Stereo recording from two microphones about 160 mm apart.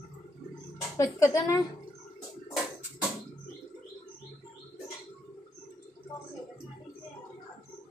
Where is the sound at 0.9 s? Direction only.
20° left (ahead or behind).